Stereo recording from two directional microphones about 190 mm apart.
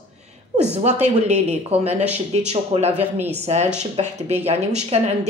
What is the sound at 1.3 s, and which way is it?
Speech, 35° right (ahead or behind).